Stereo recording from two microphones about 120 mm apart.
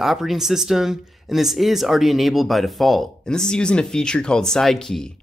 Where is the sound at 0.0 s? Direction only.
Centre (ahead or behind).